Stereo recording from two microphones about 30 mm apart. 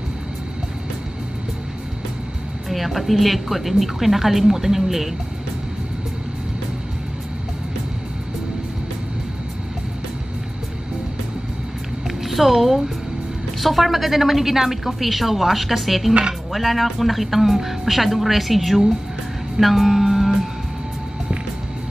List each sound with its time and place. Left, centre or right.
2.7 s a woman's voice: centre
12.2 s a woman's voice: centre
16.1 s speech: right
16.5 s a woman's voice: centre
19.6 s music: centre